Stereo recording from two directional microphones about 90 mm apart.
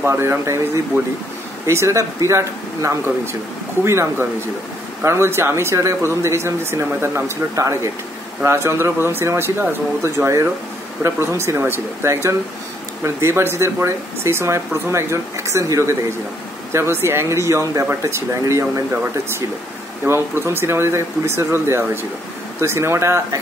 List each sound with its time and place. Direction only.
0.0 s speech: 25° right (ahead or behind)
1.7 s speech: 35° right (ahead or behind)
20.1 s speech: 25° right (ahead or behind)